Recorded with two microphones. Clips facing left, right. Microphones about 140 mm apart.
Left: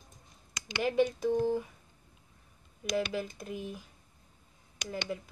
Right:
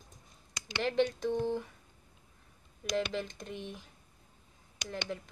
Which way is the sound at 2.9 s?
5° left (ahead or behind).